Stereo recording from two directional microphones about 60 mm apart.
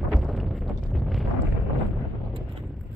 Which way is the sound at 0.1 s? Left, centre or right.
Centre.